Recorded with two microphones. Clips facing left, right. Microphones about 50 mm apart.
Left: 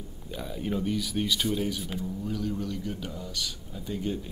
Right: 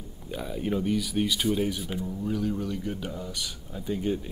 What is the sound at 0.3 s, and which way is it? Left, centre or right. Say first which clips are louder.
Speech: right 2 dB; centre.